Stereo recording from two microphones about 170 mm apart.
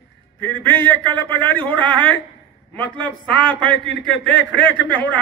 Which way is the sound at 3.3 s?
10° left (ahead or behind).